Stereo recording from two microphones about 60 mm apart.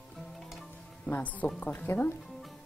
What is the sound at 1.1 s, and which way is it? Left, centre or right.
Speech, left.